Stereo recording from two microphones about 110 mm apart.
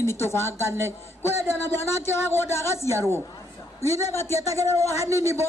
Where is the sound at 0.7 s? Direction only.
25° right (ahead or behind).